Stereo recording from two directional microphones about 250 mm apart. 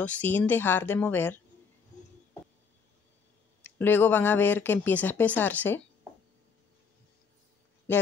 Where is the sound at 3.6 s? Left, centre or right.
Centre.